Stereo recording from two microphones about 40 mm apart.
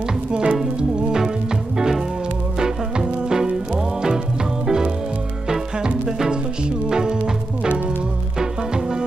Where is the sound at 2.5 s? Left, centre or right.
Centre.